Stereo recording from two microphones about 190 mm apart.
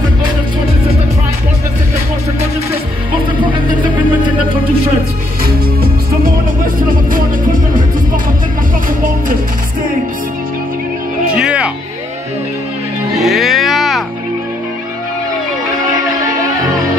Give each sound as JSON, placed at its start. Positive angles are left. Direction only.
{"t": 3.1, "sound": "music", "side_deg": -25}
{"t": 6.6, "sound": "music", "side_deg": -45}
{"t": 11.3, "sound": "music", "side_deg": -5}
{"t": 13.1, "sound": "music", "side_deg": 0}